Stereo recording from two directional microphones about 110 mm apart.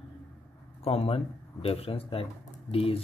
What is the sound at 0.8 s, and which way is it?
Speech, 60° left (ahead or behind).